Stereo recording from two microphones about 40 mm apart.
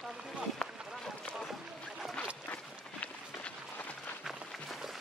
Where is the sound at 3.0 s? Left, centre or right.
Left.